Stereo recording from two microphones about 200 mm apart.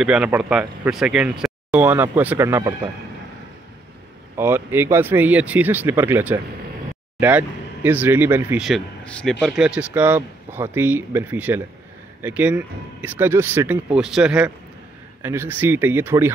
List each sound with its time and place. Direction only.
0.0 s speech: 5° right (ahead or behind)
4.4 s speech: 10° right (ahead or behind)